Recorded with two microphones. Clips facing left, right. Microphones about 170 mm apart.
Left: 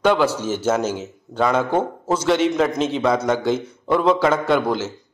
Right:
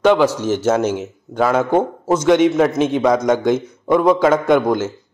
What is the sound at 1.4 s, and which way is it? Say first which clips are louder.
A man's voice: right 3 dB; 5° right (ahead or behind).